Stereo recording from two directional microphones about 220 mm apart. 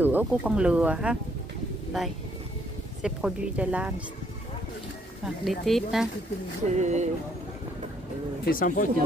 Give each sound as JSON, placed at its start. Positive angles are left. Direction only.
{"t": 0.0, "sound": "speech", "side_deg": -5}
{"t": 3.0, "sound": "speech", "side_deg": -5}
{"t": 5.2, "sound": "speech", "side_deg": 0}
{"t": 6.7, "sound": "speech", "side_deg": -30}
{"t": 8.5, "sound": "speech", "side_deg": 40}